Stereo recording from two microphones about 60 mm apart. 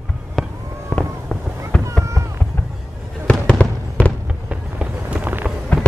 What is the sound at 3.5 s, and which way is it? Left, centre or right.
Fireworks, left.